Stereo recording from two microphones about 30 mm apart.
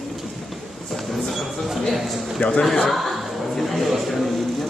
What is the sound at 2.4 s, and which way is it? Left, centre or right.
Speech, left.